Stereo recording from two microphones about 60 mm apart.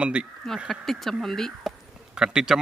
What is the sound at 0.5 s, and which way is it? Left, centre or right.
Speech, centre.